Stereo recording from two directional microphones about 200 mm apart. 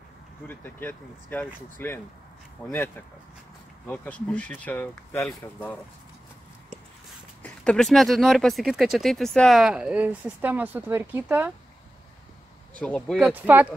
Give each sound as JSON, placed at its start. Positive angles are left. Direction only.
{"t": 0.5, "sound": "speech", "side_deg": 10}
{"t": 3.8, "sound": "speech", "side_deg": 10}
{"t": 7.4, "sound": "speech", "side_deg": 5}
{"t": 12.7, "sound": "speech", "side_deg": 5}
{"t": 13.3, "sound": "speech", "side_deg": -10}